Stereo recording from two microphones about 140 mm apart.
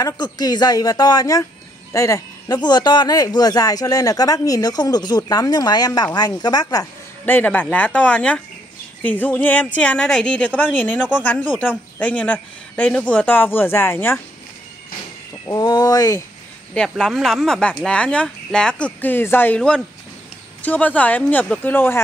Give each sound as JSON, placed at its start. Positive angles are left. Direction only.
{"t": 0.0, "sound": "speech", "side_deg": 30}
{"t": 7.2, "sound": "a woman's voice", "side_deg": 15}
{"t": 15.4, "sound": "speech", "side_deg": 30}
{"t": 16.7, "sound": "a woman's voice", "side_deg": 5}